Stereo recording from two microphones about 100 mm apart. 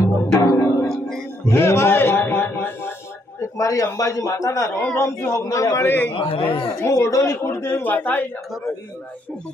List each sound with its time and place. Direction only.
0.0 s music: 35° left (ahead or behind)
0.8 s music: 5° left (ahead or behind)
1.5 s music: 25° left (ahead or behind)
3.3 s a man's voice: 35° left (ahead or behind)
5.9 s speech: 20° left (ahead or behind)
6.1 s a man's voice: 65° left (ahead or behind)
6.8 s speech: 25° left (ahead or behind)